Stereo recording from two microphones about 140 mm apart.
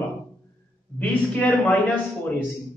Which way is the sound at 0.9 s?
10° left (ahead or behind).